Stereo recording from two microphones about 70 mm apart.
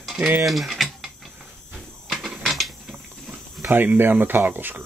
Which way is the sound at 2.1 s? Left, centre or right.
Centre.